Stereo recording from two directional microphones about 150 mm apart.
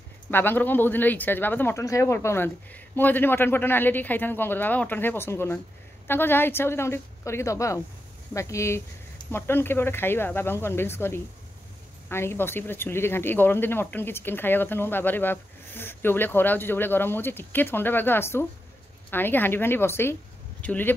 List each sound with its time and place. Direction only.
0.3 s speech: 15° left (ahead or behind)